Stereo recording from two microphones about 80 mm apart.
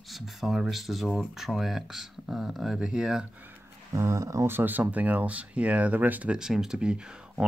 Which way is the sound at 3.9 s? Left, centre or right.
Right.